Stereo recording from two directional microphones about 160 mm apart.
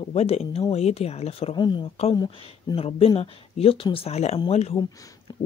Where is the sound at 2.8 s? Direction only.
35° left (ahead or behind).